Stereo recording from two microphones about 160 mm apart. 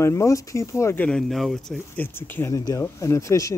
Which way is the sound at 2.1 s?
15° left (ahead or behind).